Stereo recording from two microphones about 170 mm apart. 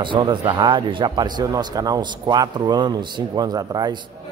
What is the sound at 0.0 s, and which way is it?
Speech, 30° right (ahead or behind).